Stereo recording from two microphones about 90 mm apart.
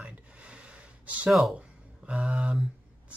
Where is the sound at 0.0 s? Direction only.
15° right (ahead or behind).